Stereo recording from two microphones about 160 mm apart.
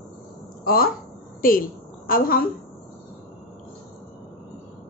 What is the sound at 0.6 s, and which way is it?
A woman's voice, 65° left (ahead or behind).